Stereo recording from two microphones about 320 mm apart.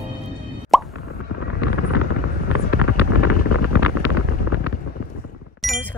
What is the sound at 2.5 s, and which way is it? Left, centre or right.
Vehicle, left.